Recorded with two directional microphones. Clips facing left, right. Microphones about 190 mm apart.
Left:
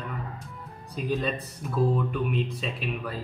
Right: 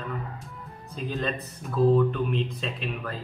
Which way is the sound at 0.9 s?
Centre (ahead or behind).